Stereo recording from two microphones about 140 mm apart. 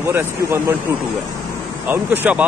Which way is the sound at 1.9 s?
15° right (ahead or behind).